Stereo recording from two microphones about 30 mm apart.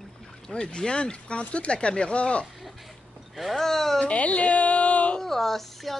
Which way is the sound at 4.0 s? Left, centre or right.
Left.